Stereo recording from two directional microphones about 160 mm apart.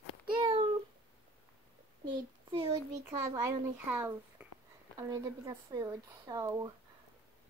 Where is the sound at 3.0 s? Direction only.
15° right (ahead or behind).